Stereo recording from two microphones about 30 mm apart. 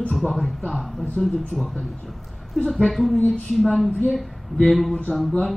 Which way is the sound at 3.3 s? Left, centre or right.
Centre.